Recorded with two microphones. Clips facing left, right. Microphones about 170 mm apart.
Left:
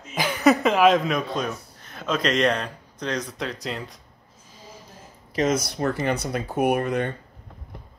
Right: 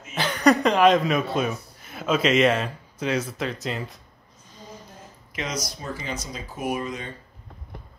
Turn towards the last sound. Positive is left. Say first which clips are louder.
# left 7 dB
turn(degrees=60)  # may be behind; listen again after turning